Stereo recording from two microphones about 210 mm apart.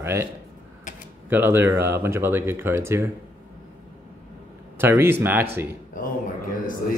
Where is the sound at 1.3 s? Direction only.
10° right (ahead or behind).